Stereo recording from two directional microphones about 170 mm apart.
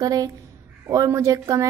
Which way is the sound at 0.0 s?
20° right (ahead or behind).